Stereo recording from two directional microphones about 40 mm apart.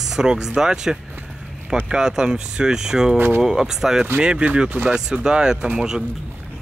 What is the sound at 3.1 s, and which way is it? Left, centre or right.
Speech, right.